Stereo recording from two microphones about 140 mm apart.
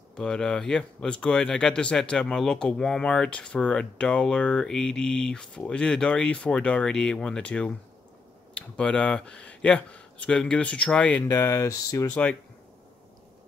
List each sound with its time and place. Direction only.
0.1 s speech: 5° left (ahead or behind)
11.2 s speech: 20° left (ahead or behind)
12.1 s speech: 10° left (ahead or behind)